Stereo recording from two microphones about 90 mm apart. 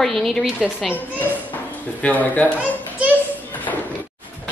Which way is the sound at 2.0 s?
20° left (ahead or behind).